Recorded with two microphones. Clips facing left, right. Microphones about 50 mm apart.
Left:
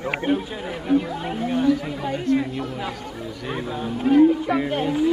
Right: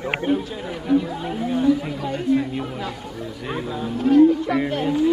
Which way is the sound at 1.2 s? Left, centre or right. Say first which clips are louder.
Even; centre.